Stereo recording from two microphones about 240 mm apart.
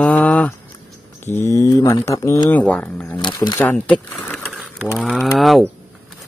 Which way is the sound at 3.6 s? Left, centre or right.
Centre.